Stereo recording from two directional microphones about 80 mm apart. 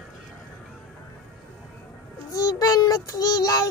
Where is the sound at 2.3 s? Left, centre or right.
Left.